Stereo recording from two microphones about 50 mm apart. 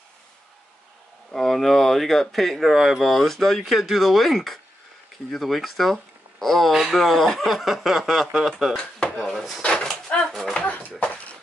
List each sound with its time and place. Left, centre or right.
1.3 s speech: centre
9.1 s wood: centre
9.8 s a sound: centre